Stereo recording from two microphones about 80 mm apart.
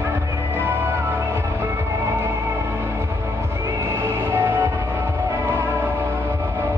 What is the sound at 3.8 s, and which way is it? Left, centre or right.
Music, right.